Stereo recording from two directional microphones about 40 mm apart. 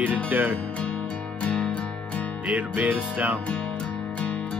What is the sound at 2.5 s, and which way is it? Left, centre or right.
Music, right.